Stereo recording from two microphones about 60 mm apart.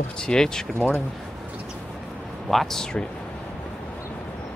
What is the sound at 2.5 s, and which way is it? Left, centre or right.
Speech, centre.